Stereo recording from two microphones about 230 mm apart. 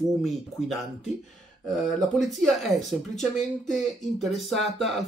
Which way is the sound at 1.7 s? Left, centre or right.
Centre.